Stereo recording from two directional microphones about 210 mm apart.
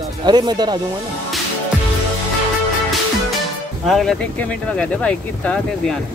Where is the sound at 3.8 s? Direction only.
Centre (ahead or behind).